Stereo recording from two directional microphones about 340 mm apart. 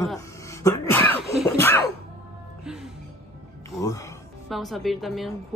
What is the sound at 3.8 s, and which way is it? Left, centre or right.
A woman's voice, centre.